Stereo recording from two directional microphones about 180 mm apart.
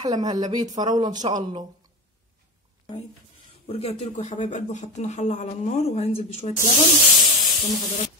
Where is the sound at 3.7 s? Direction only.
35° left (ahead or behind).